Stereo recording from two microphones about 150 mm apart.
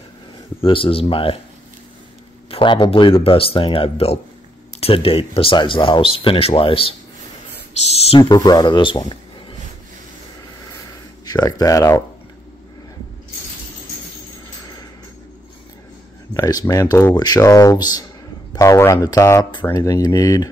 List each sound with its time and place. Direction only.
0.6 s speech: 35° left (ahead or behind)
2.5 s speech: 35° left (ahead or behind)
8.2 s speech: 25° left (ahead or behind)
11.2 s speech: 25° left (ahead or behind)
16.3 s speech: 25° left (ahead or behind)